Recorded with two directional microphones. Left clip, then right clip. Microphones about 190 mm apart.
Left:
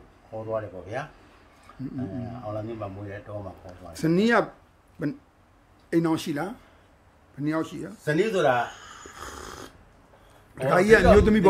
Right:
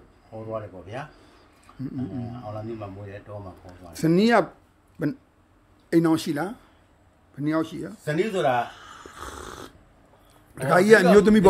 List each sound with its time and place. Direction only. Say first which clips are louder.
0.5 s speech: left 3 dB; centre (ahead or behind)
3.6 s a man's voice: right 3 dB; 20° right (ahead or behind)
8.0 s speech: left 1 dB; centre (ahead or behind)
8.5 s purr: right 1 dB; 20° right (ahead or behind)
10.5 s a man's voice: right 2 dB; 20° right (ahead or behind)